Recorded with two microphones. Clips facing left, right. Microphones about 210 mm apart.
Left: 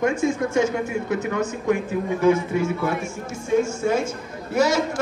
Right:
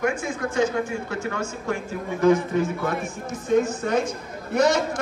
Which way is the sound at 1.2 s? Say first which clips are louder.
Left 5 dB; 20° left (ahead or behind).